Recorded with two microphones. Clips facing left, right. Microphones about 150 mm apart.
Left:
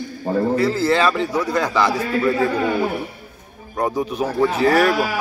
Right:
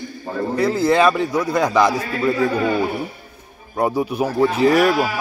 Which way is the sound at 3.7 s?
10° right (ahead or behind).